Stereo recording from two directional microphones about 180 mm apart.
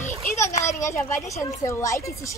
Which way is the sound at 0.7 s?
40° left (ahead or behind).